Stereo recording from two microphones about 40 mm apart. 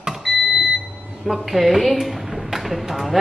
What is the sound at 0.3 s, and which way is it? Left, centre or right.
Smoke detector, centre.